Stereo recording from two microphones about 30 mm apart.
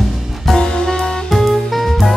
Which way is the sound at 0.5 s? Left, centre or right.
Left.